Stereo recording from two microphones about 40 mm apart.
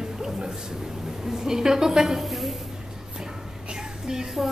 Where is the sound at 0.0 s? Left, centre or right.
Centre.